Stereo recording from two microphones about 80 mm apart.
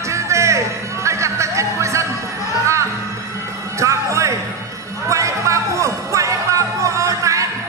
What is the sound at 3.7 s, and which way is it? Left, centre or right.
Music, right.